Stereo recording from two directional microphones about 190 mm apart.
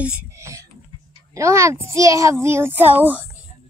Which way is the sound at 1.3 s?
15° right (ahead or behind).